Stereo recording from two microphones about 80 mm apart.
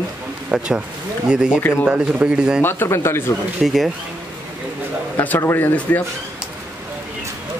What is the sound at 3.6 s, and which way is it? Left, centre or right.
Speech, centre.